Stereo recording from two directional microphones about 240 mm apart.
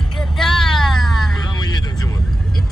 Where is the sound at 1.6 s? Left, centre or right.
Centre.